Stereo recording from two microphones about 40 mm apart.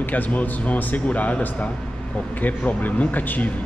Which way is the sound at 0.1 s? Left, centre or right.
Left.